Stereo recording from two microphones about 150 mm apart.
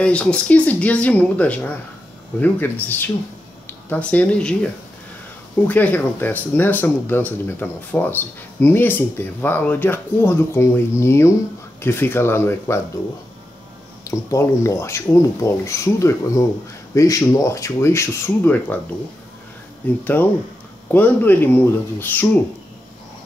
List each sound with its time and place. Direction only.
0.0 s speech: 5° left (ahead or behind)
5.7 s speech: 10° left (ahead or behind)
14.0 s speech: 20° left (ahead or behind)
20.9 s speech: 10° left (ahead or behind)